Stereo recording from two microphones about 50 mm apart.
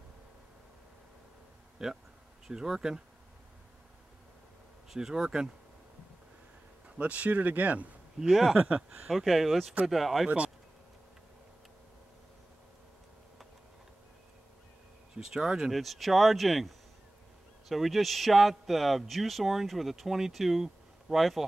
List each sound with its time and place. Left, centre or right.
1.8 s speech: centre
4.8 s speech: centre
7.0 s speech: right
8.2 s a man's voice: centre
8.5 s speech: right
9.1 s a man's voice: centre
10.2 s speech: right
15.1 s speech: centre
15.7 s a man's voice: centre